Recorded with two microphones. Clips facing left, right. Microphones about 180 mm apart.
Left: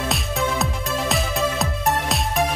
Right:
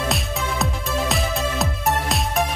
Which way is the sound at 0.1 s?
Centre (ahead or behind).